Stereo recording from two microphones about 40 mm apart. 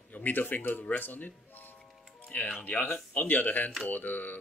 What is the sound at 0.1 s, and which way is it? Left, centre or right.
Speech, left.